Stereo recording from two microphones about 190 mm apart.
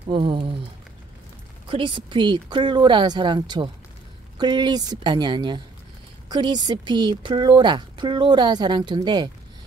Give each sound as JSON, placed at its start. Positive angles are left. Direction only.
{"t": 0.1, "sound": "speech", "side_deg": -25}
{"t": 1.7, "sound": "speech", "side_deg": -25}